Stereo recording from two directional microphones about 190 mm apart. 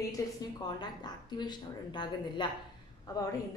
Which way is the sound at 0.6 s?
20° left (ahead or behind).